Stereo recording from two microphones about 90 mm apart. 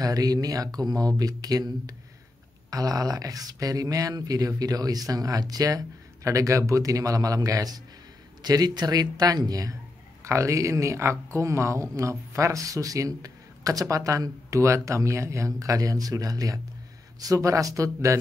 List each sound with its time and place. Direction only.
0.0 s speech: 40° right (ahead or behind)